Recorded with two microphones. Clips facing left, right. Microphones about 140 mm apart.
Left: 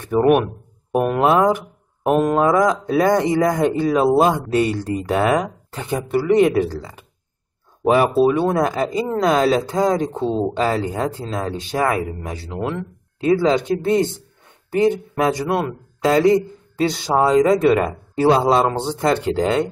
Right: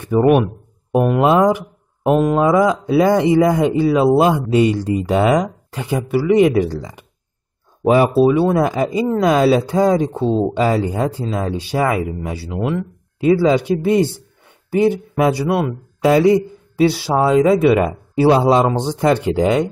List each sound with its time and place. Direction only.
0.1 s speech: 5° left (ahead or behind)
1.1 s a man's voice: 15° right (ahead or behind)
2.0 s a man's voice: centre (ahead or behind)
7.8 s a man's voice: 5° right (ahead or behind)